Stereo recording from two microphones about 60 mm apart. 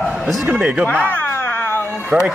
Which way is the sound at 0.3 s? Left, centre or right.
Centre.